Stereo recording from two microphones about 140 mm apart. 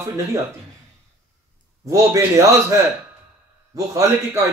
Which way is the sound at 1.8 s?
20° right (ahead or behind).